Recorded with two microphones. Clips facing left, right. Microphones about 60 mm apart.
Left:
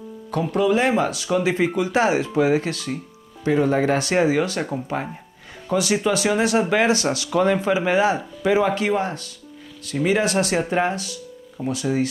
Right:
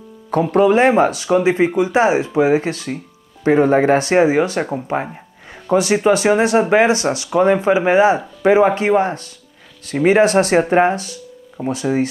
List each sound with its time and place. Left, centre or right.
0.3 s speech: right